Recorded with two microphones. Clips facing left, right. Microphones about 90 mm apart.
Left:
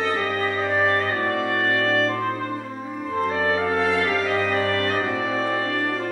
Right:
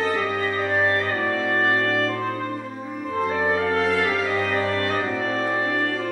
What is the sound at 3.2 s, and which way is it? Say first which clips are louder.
Music: even; centre (ahead or behind).